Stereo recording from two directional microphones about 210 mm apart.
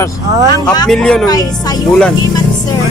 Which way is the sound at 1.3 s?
20° left (ahead or behind).